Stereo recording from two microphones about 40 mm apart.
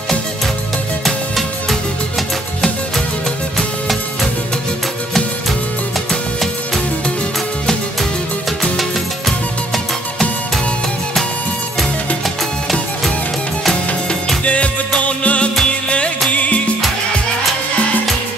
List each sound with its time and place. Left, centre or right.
1.0 s music: centre
14.4 s music: left